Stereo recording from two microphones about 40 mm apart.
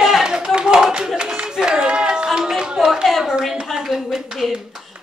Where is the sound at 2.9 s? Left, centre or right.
Centre.